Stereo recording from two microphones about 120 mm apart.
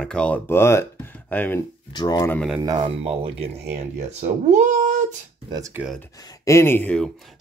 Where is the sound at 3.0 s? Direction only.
55° right (ahead or behind).